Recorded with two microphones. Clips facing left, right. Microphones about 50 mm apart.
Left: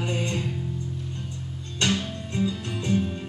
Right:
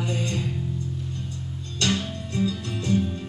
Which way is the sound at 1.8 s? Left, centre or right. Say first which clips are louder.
Even; left.